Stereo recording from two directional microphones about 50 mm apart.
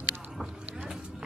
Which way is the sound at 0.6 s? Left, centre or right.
Right.